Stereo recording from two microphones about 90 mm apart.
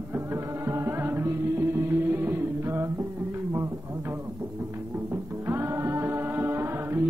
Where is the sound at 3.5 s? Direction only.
30° right (ahead or behind).